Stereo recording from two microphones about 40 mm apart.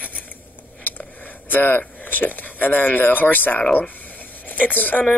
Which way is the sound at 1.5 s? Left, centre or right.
Left.